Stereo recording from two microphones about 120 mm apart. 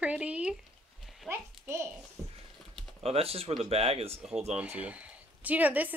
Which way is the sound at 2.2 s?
25° right (ahead or behind).